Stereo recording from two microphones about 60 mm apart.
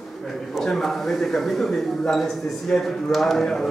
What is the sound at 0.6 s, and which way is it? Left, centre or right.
A man's voice, centre.